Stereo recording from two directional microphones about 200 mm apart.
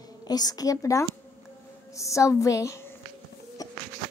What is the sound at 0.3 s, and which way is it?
A woman's voice, 20° left (ahead or behind).